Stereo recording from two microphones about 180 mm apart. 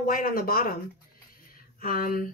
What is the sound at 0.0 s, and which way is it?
Speech, 55° left (ahead or behind).